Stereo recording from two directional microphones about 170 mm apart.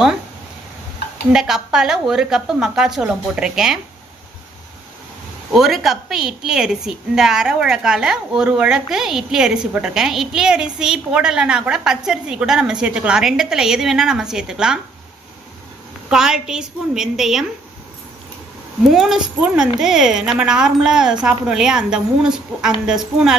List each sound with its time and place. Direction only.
1.3 s a woman's voice: 5° right (ahead or behind)
5.5 s a woman's voice: centre (ahead or behind)
16.1 s a woman's voice: 5° right (ahead or behind)
18.9 s a woman's voice: centre (ahead or behind)